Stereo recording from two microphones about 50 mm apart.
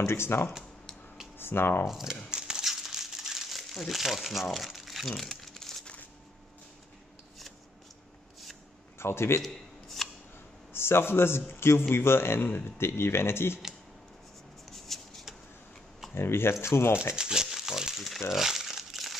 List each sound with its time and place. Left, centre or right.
0.0 s a man's voice: left
1.9 s speech: centre
2.3 s crumpling: centre
8.9 s a man's voice: left
10.0 s scissors: centre
10.7 s a man's voice: left
14.9 s shuffling cards: centre
16.2 s a man's voice: left
17.1 s crumpling: centre